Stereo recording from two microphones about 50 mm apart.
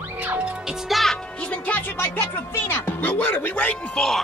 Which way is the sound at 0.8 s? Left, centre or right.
Centre.